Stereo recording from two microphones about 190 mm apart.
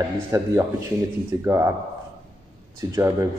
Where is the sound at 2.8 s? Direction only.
15° right (ahead or behind).